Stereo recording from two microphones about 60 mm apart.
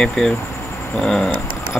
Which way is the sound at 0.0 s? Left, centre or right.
Centre.